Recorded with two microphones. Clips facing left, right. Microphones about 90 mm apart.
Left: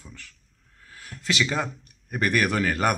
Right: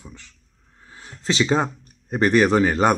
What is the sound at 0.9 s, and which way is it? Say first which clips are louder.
Speech: right 4 dB; 25° right (ahead or behind).